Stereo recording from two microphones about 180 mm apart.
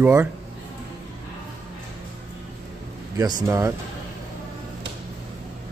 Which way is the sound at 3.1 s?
20° right (ahead or behind).